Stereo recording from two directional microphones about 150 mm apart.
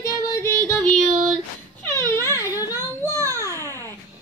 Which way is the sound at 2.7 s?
20° right (ahead or behind).